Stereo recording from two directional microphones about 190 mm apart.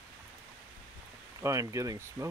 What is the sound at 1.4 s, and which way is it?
Speech, 15° right (ahead or behind).